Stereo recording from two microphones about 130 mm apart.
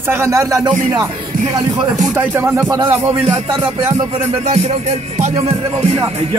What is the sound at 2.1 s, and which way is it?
Music, 15° right (ahead or behind).